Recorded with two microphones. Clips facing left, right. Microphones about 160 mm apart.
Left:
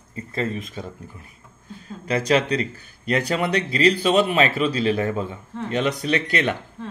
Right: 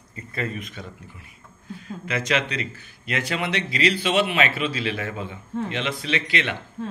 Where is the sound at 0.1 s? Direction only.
30° left (ahead or behind).